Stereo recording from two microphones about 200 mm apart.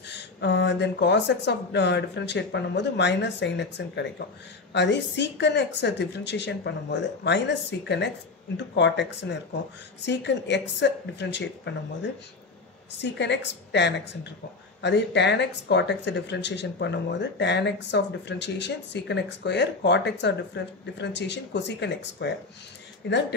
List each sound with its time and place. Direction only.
0.1 s speech: 60° left (ahead or behind)